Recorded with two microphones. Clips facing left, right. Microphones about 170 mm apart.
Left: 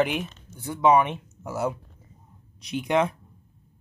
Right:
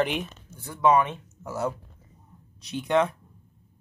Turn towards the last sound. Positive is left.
turn(degrees=15)  # may be behind; listen again after turning